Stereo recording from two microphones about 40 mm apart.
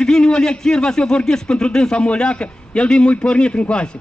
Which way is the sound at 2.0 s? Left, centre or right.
Left.